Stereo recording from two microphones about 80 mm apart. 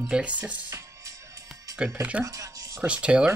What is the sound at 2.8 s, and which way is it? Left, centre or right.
Speech, centre.